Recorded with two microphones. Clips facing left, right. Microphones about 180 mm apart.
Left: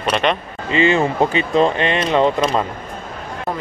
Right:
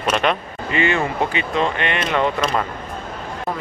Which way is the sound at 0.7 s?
25° left (ahead or behind).